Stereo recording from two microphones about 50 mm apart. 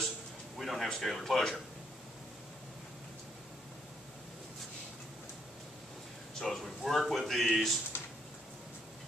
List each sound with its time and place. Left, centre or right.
0.6 s speech: centre
6.4 s speech: centre
7.9 s a sound: left